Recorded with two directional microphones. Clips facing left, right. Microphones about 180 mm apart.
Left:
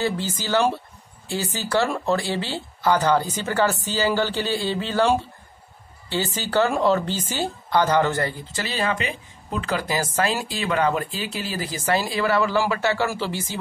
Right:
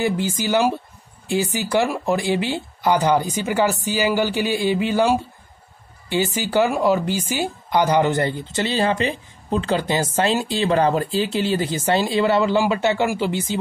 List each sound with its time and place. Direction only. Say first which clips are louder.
0.0 s speech: right 4 dB; 15° right (ahead or behind)